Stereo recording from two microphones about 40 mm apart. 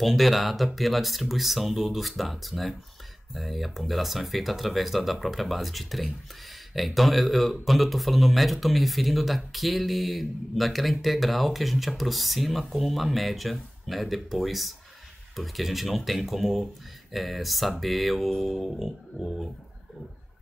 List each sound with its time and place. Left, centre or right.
0.0 s speech: centre